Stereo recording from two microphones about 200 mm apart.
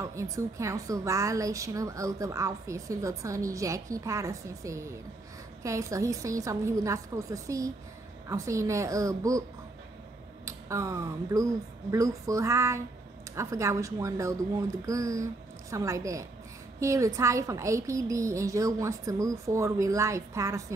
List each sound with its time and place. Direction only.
0.0 s a woman's voice: 15° right (ahead or behind)
10.4 s a woman's voice: 15° right (ahead or behind)